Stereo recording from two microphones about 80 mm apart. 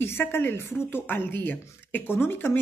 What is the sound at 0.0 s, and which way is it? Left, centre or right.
A woman's voice, left.